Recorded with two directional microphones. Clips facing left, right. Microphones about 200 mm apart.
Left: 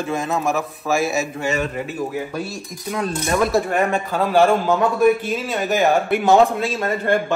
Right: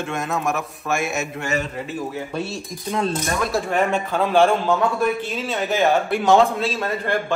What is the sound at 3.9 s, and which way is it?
A man's voice, centre (ahead or behind).